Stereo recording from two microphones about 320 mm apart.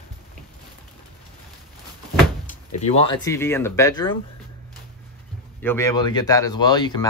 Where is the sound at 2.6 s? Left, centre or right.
Centre.